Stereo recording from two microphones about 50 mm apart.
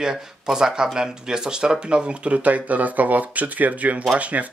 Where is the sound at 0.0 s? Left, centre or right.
Centre.